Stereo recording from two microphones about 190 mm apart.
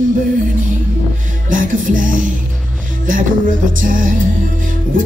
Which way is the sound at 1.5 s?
45° right (ahead or behind).